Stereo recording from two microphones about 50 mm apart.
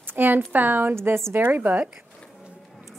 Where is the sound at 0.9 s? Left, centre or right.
Right.